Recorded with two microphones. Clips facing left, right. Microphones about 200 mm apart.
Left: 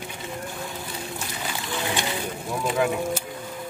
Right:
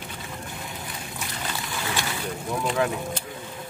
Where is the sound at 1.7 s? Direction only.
20° left (ahead or behind).